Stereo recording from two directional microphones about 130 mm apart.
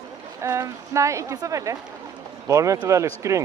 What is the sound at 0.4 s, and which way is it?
Speech, 25° right (ahead or behind).